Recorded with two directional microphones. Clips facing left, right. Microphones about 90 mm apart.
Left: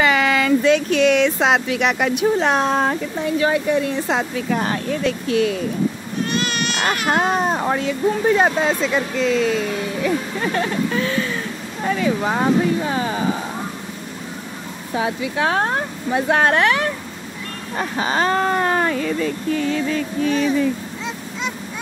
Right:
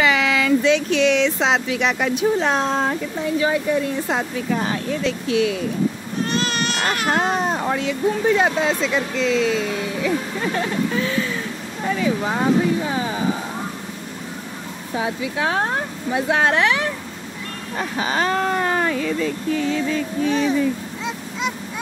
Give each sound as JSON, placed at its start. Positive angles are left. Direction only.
{"t": 0.0, "sound": "speech", "side_deg": 45}
{"t": 6.2, "sound": "baby cry", "side_deg": -35}
{"t": 7.1, "sound": "speech", "side_deg": 45}
{"t": 15.0, "sound": "speech", "side_deg": 60}
{"t": 17.7, "sound": "speech", "side_deg": 35}
{"t": 20.2, "sound": "speech", "side_deg": -25}
{"t": 21.0, "sound": "honk", "side_deg": -5}